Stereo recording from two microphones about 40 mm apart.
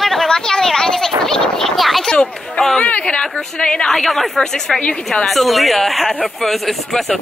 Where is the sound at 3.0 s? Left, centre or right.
Left.